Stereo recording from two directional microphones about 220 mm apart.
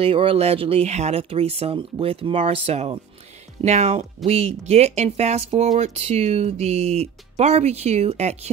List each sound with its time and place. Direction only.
0.0 s speech: 25° right (ahead or behind)